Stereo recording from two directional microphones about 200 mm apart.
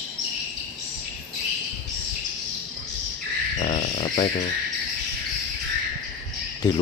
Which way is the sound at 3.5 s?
30° left (ahead or behind).